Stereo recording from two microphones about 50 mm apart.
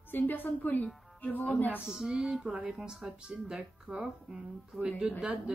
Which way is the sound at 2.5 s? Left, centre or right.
Centre.